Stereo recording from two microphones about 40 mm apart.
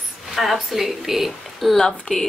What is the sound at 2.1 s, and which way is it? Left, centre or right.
Speech, left.